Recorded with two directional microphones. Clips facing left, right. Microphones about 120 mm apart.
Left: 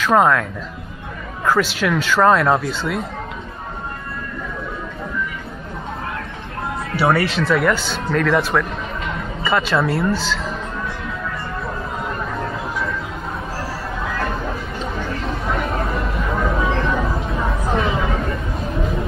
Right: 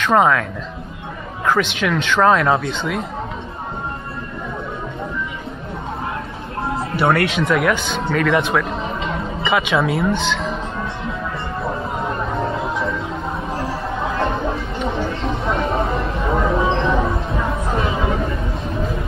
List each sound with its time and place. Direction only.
0.0 s speech: centre (ahead or behind)
7.0 s speech: centre (ahead or behind)
11.6 s a sound: 25° right (ahead or behind)
13.6 s music: 25° right (ahead or behind)
15.4 s a sound: 25° right (ahead or behind)
17.1 s music: centre (ahead or behind)
17.7 s chatter: 25° right (ahead or behind)